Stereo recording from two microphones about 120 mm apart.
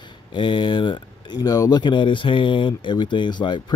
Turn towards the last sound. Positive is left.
turn(degrees=40)  # may be behind; listen again after turning